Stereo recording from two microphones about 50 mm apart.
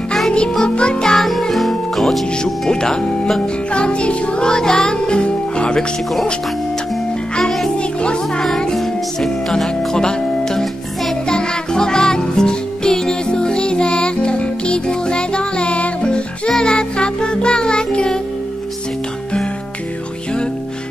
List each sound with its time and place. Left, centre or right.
0.3 s music: centre
1.1 s music: centre
2.4 s speech: centre
3.7 s music: left
7.7 s music: centre
8.7 s music: centre